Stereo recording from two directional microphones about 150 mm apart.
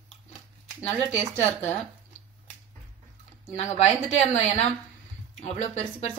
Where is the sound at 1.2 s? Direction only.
50° left (ahead or behind).